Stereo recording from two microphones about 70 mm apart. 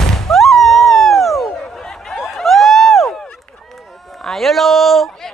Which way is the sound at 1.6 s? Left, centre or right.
Centre.